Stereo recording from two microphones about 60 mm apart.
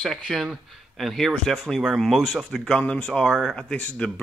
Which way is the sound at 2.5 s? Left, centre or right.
Centre.